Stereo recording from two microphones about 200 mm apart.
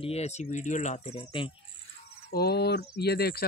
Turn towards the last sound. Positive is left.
turn(degrees=50)  # may be behind; listen again after turning